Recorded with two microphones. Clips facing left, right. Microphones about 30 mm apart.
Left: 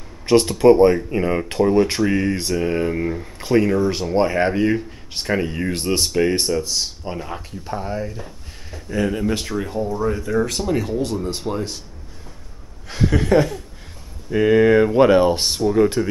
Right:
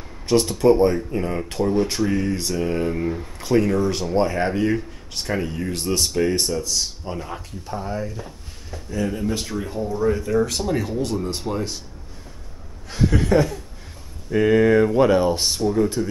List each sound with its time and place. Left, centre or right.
0.3 s speech: left
8.9 s speech: left
9.4 s speech: centre
12.8 s speech: centre
16.0 s speech: left